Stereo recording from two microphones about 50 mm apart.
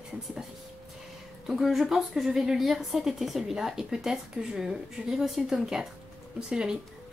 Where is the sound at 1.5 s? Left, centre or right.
Centre.